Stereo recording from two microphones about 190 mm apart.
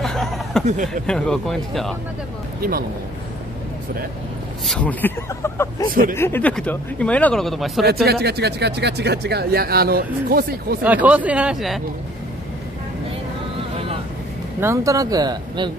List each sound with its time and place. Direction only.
0.0 s a sound: centre (ahead or behind)
0.8 s speech: 5° left (ahead or behind)
4.6 s speech: 5° left (ahead or behind)
7.8 s speech: 55° right (ahead or behind)
10.8 s speech: 10° right (ahead or behind)
14.6 s speech: 15° right (ahead or behind)